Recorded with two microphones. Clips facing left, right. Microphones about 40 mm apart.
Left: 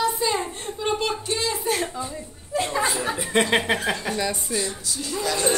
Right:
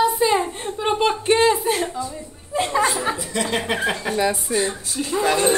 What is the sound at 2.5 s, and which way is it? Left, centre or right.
Speech, right.